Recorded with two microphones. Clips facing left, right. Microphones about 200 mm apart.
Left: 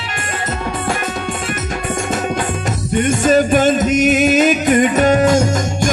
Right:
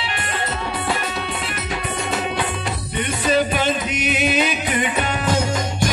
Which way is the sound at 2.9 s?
45° left (ahead or behind).